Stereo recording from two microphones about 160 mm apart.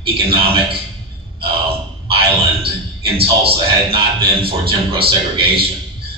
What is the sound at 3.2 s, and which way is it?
A man's voice, 35° right (ahead or behind).